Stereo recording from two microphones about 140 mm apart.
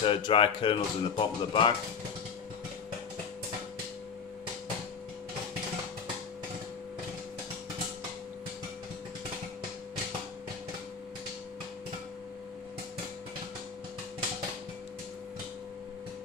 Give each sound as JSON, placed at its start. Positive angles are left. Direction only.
{"t": 0.0, "sound": "speech", "side_deg": 40}